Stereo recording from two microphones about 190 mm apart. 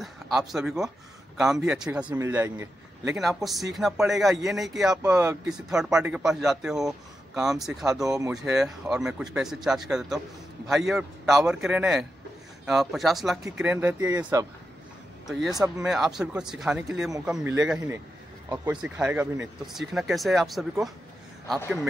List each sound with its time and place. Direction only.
0.0 s speech: centre (ahead or behind)
2.0 s a man's voice: 15° right (ahead or behind)
3.2 s speech: centre (ahead or behind)
4.9 s a man's voice: 15° right (ahead or behind)
5.5 s a man's voice: 5° right (ahead or behind)
15.2 s a man's voice: centre (ahead or behind)